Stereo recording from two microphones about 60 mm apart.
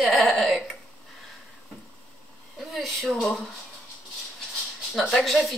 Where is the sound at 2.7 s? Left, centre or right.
Centre.